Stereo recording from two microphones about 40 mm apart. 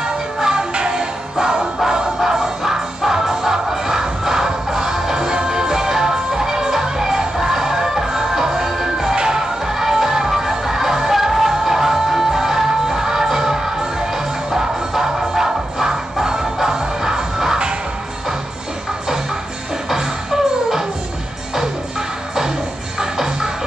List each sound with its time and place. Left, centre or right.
0.4 s music: centre
19.9 s music: centre
22.9 s music: centre